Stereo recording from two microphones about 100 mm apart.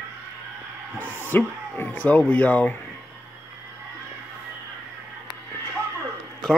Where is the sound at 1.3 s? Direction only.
20° left (ahead or behind).